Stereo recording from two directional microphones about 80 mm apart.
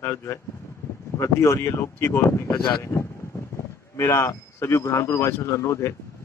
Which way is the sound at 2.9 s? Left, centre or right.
Left.